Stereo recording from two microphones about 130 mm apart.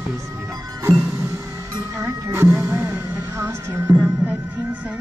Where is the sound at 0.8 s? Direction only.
20° right (ahead or behind).